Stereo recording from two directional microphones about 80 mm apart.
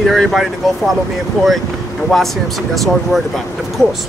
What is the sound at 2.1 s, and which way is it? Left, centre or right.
Speech, centre.